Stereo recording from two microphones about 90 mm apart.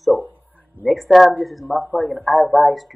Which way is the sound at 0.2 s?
20° left (ahead or behind).